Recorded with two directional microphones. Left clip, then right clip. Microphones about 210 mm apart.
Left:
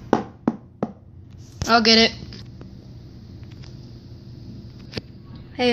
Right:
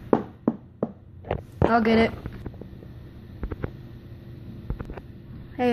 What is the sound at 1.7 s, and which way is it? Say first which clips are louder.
Speech: left 6 dB; 5° left (ahead or behind).